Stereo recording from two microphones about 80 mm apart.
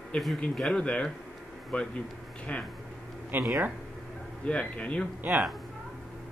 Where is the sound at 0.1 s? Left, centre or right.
Centre.